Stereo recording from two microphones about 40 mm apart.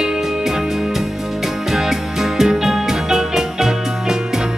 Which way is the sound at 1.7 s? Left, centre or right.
Centre.